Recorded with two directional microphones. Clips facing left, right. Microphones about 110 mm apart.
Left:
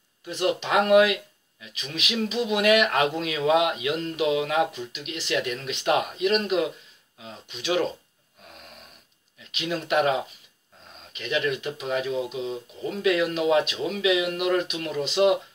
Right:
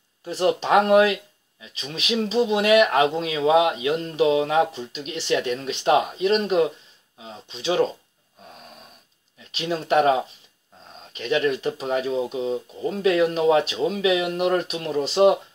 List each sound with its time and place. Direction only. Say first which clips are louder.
0.2 s speech: right 4 dB; 35° right (ahead or behind)
9.5 s speech: right 4 dB; 35° right (ahead or behind)